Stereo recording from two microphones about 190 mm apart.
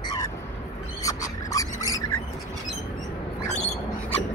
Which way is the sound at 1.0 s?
15° left (ahead or behind).